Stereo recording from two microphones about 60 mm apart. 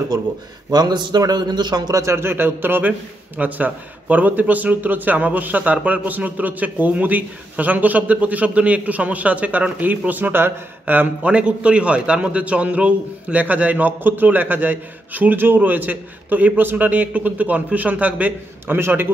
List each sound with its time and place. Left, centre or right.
1.7 s speech: right
2.0 s a man's voice: right
11.2 s a man's voice: centre
18.7 s a man's voice: right